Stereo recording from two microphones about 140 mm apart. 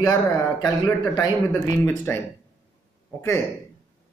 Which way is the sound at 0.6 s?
30° left (ahead or behind).